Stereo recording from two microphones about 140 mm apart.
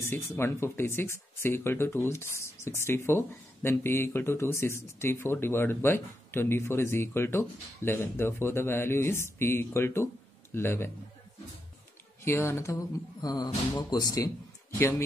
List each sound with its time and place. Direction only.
0.0 s speech: 20° left (ahead or behind)
12.2 s speech: 20° left (ahead or behind)